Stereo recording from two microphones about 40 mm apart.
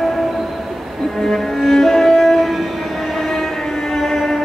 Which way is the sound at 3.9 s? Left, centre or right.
Centre.